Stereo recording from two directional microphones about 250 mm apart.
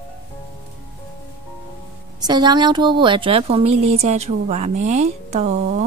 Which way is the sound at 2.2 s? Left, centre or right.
Centre.